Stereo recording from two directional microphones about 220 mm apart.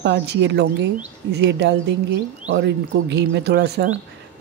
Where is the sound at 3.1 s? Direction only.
50° right (ahead or behind).